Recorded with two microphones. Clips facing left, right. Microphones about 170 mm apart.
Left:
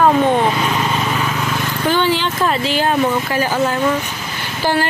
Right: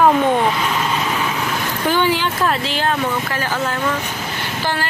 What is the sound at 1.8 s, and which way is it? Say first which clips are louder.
Vehicle: left 1 dB; 10° right (ahead or behind).